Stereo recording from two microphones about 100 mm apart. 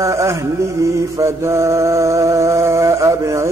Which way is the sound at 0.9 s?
30° right (ahead or behind).